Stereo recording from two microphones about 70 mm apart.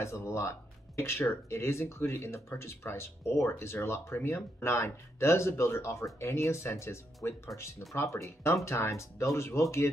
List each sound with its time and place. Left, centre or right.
0.0 s speech: left
7.9 s speech: left